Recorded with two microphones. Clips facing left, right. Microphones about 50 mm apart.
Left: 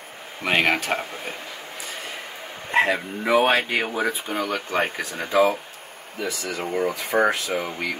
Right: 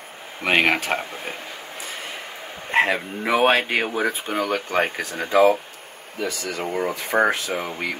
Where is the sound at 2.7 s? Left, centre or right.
Right.